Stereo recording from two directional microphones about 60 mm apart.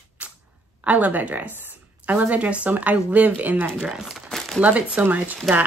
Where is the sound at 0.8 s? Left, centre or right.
Right.